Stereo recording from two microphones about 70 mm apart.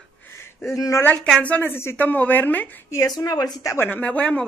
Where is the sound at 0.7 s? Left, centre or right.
Left.